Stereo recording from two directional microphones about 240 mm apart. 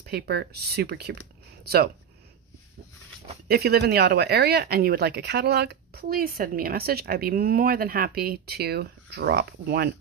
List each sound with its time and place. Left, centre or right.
0.0 s speech: right
3.4 s speech: right